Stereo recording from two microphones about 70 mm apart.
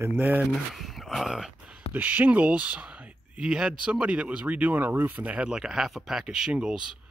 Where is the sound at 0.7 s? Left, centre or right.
Centre.